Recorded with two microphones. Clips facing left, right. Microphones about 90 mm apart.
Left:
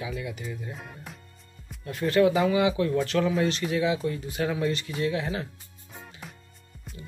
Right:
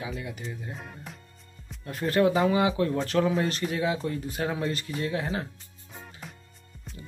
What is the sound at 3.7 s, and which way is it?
Speech, 40° right (ahead or behind).